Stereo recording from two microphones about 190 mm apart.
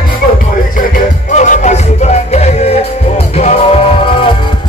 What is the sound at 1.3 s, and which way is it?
Music, 40° left (ahead or behind).